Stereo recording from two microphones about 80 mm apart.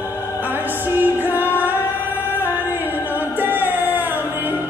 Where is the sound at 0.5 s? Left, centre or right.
Right.